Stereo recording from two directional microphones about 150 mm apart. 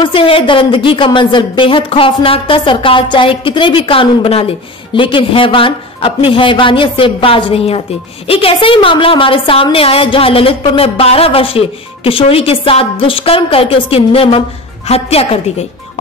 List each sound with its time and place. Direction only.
0.0 s a woman's voice: 35° left (ahead or behind)